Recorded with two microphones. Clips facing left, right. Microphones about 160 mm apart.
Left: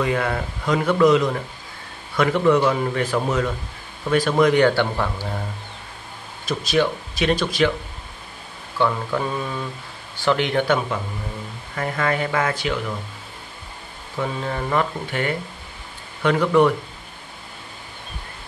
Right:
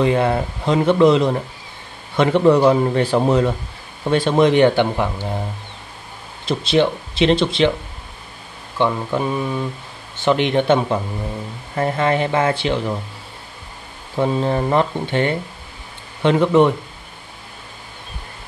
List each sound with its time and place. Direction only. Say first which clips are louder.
0.0 s speech: right 6 dB; 30° right (ahead or behind)
6.4 s speech: right 4 dB; 25° right (ahead or behind)
8.7 s speech: right 2 dB; 20° right (ahead or behind)
14.1 s speech: right 7 dB; 30° right (ahead or behind)